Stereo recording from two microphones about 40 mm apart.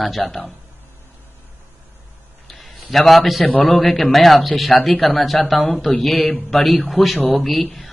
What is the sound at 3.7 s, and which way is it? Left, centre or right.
Speech, centre.